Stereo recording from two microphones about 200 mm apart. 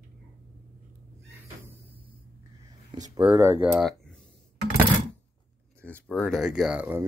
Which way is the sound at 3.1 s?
25° right (ahead or behind).